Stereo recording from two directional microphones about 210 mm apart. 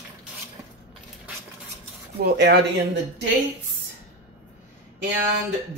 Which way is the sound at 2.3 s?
50° right (ahead or behind).